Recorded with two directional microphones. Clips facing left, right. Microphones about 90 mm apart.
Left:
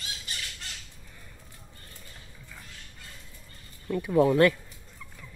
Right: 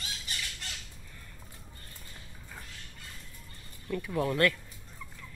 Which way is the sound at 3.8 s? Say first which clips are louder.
Left 8 dB; 20° left (ahead or behind).